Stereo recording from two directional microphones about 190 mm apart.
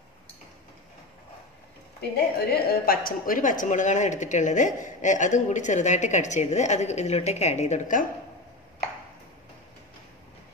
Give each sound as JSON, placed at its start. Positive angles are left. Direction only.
{"t": 2.5, "sound": "speech", "side_deg": 50}